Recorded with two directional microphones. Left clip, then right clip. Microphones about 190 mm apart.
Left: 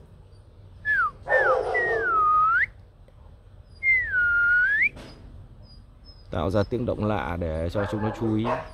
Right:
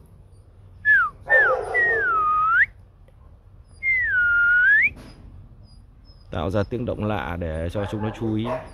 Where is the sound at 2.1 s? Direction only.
Centre (ahead or behind).